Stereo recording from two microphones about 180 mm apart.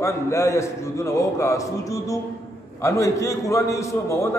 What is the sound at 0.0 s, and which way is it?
A man's voice, 15° left (ahead or behind).